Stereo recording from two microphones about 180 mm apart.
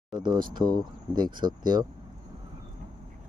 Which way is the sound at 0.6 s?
25° right (ahead or behind).